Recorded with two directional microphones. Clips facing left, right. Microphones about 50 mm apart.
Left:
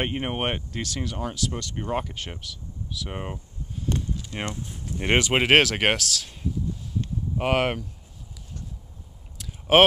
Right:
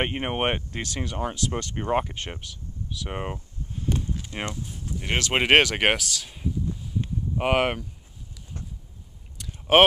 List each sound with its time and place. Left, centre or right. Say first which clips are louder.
0.0 s speech: right 1 dB; centre
1.5 s speech: right 3 dB; right; by 3.3 s centre
4.4 s speech: even; centre
9.4 s a sound: even; centre